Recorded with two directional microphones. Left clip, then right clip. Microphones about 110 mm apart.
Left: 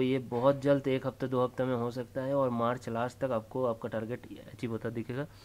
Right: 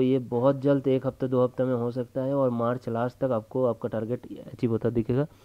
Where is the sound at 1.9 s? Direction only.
45° right (ahead or behind).